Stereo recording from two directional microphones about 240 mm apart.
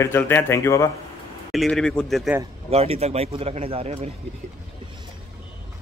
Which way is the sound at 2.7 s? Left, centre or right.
Right.